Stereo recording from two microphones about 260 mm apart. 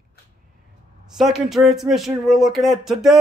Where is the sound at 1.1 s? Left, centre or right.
Centre.